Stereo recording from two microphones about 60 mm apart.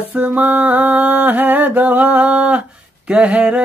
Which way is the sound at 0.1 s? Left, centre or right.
Right.